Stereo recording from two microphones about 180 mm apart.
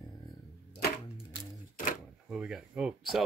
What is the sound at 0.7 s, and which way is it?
Typewriter, 65° left (ahead or behind).